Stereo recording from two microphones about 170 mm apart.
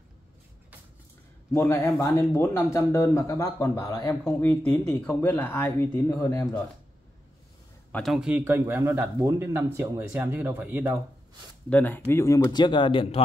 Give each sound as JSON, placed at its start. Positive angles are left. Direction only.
{"t": 1.5, "sound": "speech", "side_deg": 15}
{"t": 7.9, "sound": "a man's voice", "side_deg": 0}
{"t": 11.7, "sound": "speech", "side_deg": 10}